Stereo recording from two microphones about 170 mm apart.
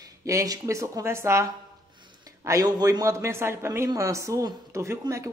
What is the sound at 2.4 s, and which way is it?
A man's voice, 20° right (ahead or behind).